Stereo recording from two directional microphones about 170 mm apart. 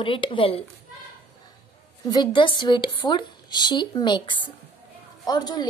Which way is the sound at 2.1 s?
25° left (ahead or behind).